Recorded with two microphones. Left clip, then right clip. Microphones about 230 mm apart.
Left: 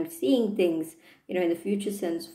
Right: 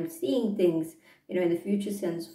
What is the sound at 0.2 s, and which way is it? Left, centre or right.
Speech, left.